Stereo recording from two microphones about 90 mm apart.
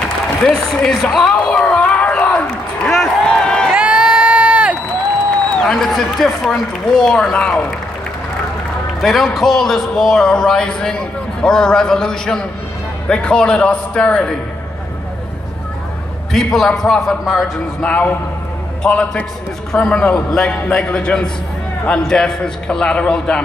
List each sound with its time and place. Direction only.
0.5 s a man's voice: 5° left (ahead or behind)
1.3 s a sound: 10° left (ahead or behind)
3.7 s crowd: 15° right (ahead or behind)
5.6 s a man's voice: 5° left (ahead or behind)
9.0 s a man's voice: centre (ahead or behind)
16.5 s a man's voice: 5° left (ahead or behind)
17.8 s a man's voice: 15° left (ahead or behind)